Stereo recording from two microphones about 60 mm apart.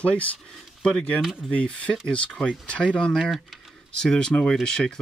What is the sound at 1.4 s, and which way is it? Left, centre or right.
Speech, centre.